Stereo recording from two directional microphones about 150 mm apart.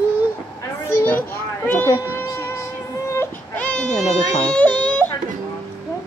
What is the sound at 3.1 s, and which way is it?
Baby cry, 15° left (ahead or behind).